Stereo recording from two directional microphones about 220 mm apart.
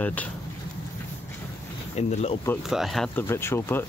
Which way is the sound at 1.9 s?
30° left (ahead or behind).